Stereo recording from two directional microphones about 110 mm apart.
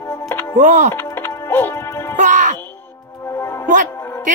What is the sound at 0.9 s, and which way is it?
Music, 20° left (ahead or behind).